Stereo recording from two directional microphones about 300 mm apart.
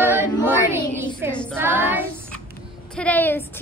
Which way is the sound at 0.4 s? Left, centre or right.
Centre.